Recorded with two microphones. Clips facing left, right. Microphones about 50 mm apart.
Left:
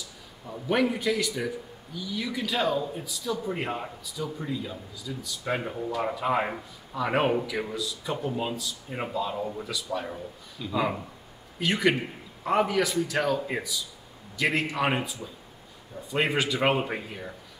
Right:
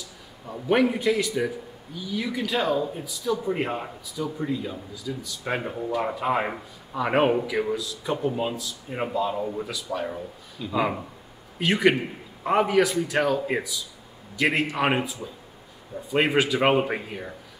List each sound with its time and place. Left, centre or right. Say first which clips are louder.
0.5 s speech: right 4 dB; centre